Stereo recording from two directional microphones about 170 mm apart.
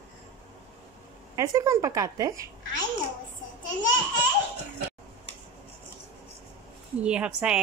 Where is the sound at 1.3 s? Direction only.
20° right (ahead or behind).